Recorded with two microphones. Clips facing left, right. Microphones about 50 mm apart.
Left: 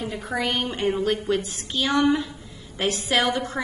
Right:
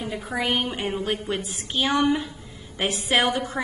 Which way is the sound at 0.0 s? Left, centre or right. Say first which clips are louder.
Left 1 dB; centre.